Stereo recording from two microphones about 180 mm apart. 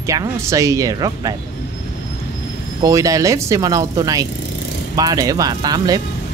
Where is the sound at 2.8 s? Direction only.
20° right (ahead or behind).